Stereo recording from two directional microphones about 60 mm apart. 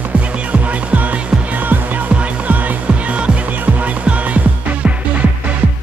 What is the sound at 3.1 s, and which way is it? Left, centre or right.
Music, right.